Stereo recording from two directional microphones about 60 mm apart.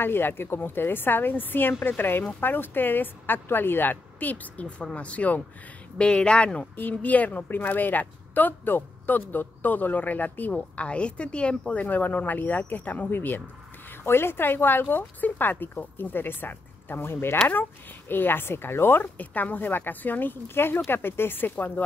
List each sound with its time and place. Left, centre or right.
0.0 s speech: left; by 6.7 s centre
6.8 s speech: left